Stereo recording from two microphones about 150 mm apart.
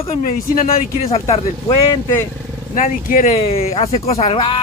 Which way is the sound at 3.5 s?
40° left (ahead or behind).